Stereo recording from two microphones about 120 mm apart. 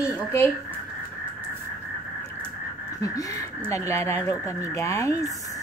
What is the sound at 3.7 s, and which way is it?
Speech, 25° left (ahead or behind).